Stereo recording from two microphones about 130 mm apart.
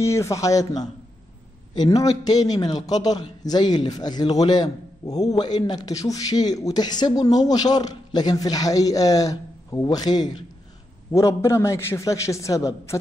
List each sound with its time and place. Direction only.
0.0 s a man's voice: 20° left (ahead or behind)
11.1 s a man's voice: 20° left (ahead or behind)